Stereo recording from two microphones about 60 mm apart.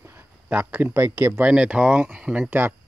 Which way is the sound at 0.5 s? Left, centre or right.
Right.